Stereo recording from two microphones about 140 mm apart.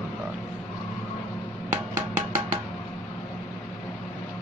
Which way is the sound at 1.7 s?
15° right (ahead or behind).